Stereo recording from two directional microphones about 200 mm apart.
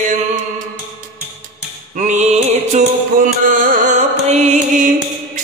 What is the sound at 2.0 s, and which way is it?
Music, 35° right (ahead or behind).